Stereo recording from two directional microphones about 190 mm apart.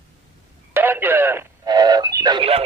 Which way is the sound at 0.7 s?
10° right (ahead or behind).